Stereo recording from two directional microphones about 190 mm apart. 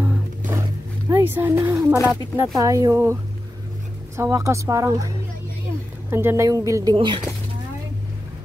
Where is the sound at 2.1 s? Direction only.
15° right (ahead or behind).